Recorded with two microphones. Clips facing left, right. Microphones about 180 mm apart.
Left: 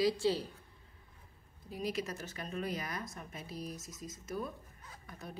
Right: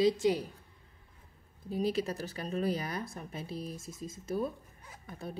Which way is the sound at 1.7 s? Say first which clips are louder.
Right 6 dB; 30° right (ahead or behind).